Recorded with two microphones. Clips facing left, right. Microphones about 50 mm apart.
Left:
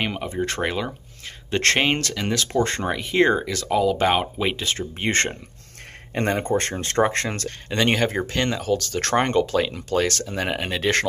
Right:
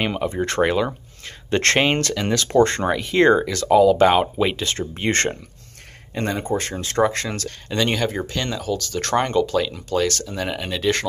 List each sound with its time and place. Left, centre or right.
0.0 s speech: centre
6.1 s speech: left